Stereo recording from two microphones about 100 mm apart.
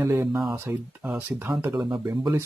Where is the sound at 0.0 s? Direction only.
20° right (ahead or behind).